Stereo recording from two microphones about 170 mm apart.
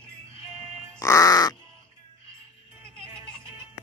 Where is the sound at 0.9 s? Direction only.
20° left (ahead or behind).